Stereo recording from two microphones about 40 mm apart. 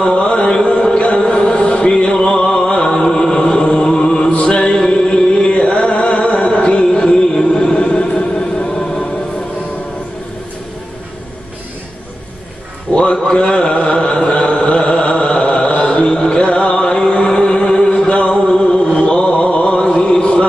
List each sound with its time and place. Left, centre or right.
0.0 s mantra: left
0.7 s music: left
12.9 s a sound: left
17.1 s music: left
18.9 s mantra: left
19.8 s chant: left